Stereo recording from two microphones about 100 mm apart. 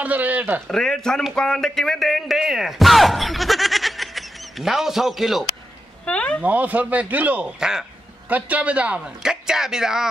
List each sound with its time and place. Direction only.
0.0 s speech: 15° right (ahead or behind)
0.7 s speech: 5° left (ahead or behind)
6.0 s speech: 10° left (ahead or behind)
6.4 s speech: 15° right (ahead or behind)